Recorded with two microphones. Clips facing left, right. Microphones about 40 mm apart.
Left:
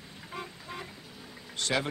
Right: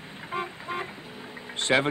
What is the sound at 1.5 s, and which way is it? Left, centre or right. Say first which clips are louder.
Speech: right 7 dB; right.